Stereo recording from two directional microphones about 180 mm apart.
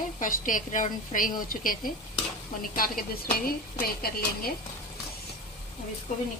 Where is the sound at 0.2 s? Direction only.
50° left (ahead or behind).